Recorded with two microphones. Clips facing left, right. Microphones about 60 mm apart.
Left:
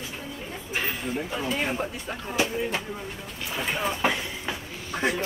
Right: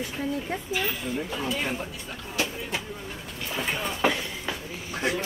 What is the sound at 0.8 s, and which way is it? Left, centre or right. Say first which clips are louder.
Speech: even; centre.